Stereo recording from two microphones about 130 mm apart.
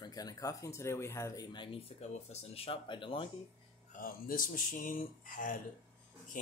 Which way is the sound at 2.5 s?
45° left (ahead or behind).